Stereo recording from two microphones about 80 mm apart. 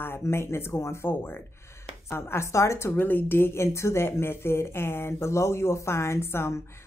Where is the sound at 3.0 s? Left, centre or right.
Left.